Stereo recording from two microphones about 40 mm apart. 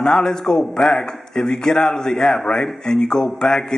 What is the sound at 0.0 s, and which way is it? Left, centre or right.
Speech, centre.